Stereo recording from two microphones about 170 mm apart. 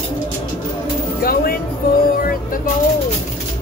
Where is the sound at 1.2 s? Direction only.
60° left (ahead or behind).